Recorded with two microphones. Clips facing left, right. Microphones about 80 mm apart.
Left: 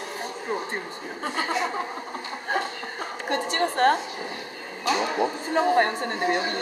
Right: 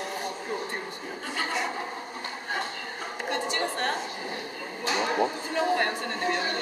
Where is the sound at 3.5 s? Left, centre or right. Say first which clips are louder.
Left 12 dB; left.